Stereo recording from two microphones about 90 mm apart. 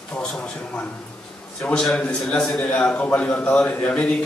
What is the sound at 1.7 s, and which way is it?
A man's voice, 5° left (ahead or behind).